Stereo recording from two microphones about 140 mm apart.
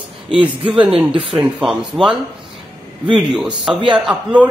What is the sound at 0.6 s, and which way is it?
Speech, 40° right (ahead or behind).